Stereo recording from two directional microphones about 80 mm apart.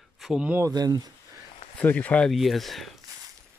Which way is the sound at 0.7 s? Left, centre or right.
Right.